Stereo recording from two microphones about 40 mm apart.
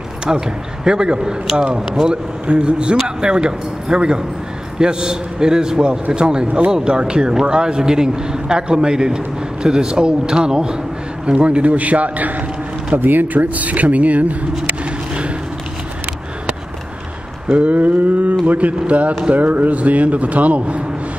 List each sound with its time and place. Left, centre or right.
0.3 s a man's voice: right
12.9 s speech: right
17.5 s speech: right